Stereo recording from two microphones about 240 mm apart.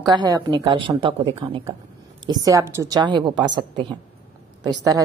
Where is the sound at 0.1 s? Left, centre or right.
Centre.